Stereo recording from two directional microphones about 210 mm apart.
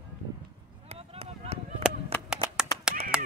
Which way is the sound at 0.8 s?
30° right (ahead or behind).